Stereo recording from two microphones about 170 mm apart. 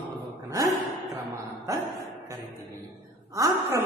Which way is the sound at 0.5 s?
20° right (ahead or behind).